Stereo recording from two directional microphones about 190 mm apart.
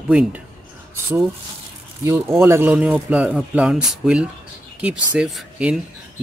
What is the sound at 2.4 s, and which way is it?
Speech, 15° right (ahead or behind).